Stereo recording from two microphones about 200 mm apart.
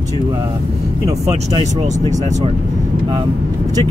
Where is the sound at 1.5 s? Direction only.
35° right (ahead or behind).